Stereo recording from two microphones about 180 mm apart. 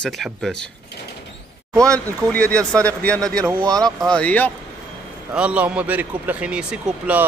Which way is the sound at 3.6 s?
20° right (ahead or behind).